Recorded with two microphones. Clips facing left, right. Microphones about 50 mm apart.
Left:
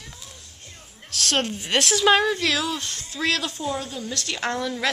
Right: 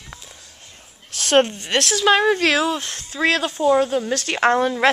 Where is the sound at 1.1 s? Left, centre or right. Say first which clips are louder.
Right 8 dB; right.